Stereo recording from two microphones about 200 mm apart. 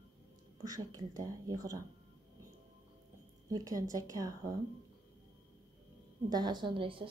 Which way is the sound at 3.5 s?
15° right (ahead or behind).